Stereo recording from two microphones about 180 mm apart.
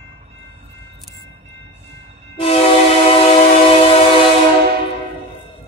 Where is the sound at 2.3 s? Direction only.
35° left (ahead or behind).